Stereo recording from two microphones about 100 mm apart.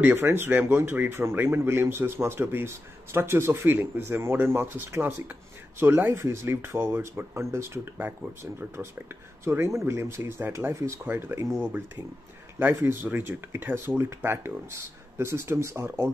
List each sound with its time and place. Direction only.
0.0 s a man's voice: 20° right (ahead or behind)